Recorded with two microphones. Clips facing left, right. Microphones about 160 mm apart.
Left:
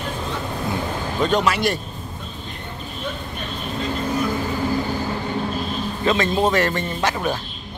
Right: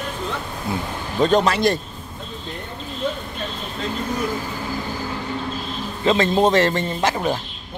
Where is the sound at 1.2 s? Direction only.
35° right (ahead or behind).